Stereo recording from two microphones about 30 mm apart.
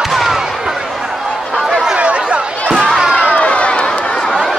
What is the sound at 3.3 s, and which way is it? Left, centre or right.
Run, left.